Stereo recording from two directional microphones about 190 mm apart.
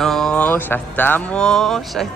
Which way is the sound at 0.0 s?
Centre (ahead or behind).